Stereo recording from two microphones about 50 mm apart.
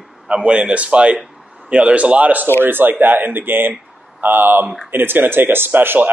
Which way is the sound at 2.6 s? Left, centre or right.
Right.